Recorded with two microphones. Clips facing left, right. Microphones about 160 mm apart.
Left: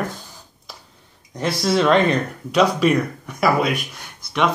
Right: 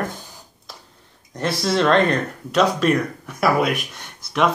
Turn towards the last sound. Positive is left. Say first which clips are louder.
# right 1 dB
turn(degrees=0)  # may be behind; listen again after turning